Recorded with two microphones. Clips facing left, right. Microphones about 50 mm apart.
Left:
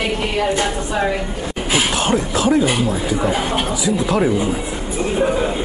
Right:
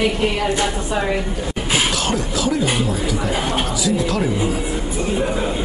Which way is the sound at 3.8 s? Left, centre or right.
Left.